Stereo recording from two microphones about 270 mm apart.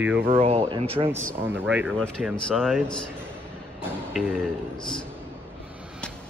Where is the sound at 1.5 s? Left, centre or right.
Centre.